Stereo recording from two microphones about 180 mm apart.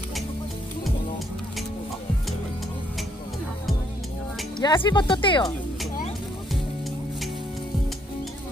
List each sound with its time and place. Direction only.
4.6 s speech: 25° left (ahead or behind)